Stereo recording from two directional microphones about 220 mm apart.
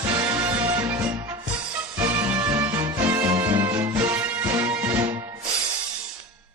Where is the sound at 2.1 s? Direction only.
10° right (ahead or behind).